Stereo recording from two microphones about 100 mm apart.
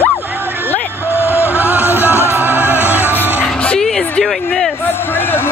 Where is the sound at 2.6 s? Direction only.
25° left (ahead or behind).